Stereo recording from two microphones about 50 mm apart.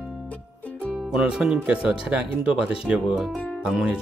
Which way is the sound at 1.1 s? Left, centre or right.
Centre.